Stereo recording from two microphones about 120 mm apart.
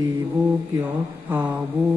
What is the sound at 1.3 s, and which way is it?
Speech, 15° right (ahead or behind).